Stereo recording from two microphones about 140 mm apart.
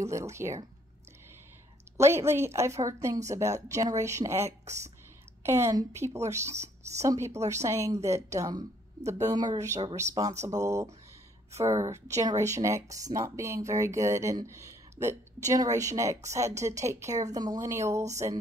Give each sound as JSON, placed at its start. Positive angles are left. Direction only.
{"t": 0.0, "sound": "speech", "side_deg": -20}
{"t": 2.0, "sound": "speech", "side_deg": -20}